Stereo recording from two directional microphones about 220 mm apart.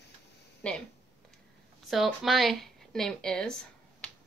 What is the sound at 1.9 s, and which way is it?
Speech, centre (ahead or behind).